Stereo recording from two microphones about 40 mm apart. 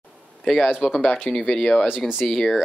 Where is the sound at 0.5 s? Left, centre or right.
Centre.